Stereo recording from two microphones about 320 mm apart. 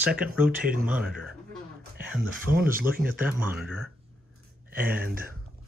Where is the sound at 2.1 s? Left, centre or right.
Centre.